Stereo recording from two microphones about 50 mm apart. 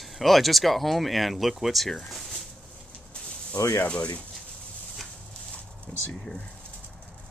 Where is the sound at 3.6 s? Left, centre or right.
Left.